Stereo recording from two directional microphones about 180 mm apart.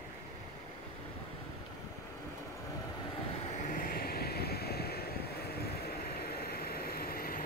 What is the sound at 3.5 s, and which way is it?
Vehicle, 45° left (ahead or behind).